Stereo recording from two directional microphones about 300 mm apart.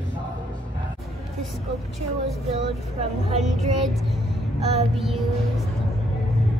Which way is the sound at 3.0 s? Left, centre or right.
Right.